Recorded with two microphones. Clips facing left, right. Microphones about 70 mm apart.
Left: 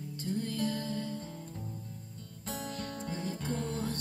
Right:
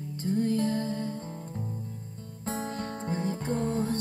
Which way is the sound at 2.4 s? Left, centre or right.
Right.